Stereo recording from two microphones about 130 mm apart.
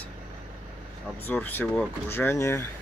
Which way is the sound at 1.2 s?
15° left (ahead or behind).